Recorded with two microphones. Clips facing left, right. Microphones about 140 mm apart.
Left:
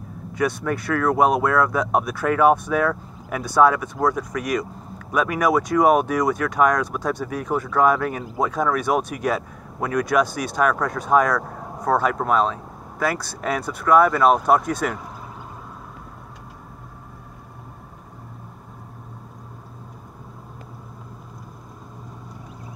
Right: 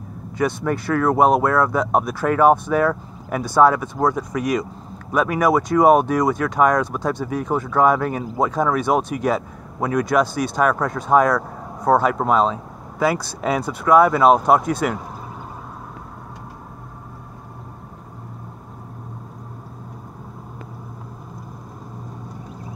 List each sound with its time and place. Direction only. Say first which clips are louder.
0.4 s speech: right 2 dB; 5° right (ahead or behind)